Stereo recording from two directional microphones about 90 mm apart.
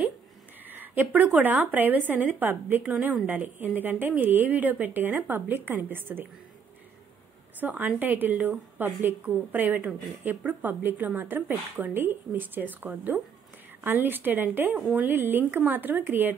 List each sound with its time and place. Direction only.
0.7 s a woman's voice: 20° right (ahead or behind)
7.6 s a woman's voice: 20° right (ahead or behind)